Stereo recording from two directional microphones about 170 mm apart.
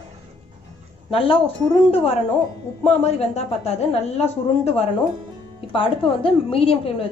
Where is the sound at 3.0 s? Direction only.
40° left (ahead or behind).